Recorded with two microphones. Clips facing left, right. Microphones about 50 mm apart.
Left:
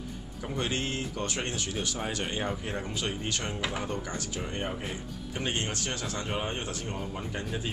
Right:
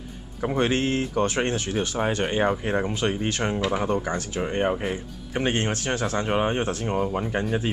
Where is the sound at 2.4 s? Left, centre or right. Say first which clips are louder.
Right 10 dB; right.